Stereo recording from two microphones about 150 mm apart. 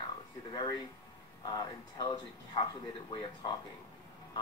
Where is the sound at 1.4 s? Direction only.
25° left (ahead or behind).